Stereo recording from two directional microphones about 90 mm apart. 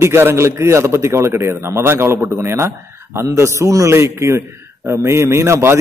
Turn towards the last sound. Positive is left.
turn(degrees=-30)  # may be behind; listen again after turning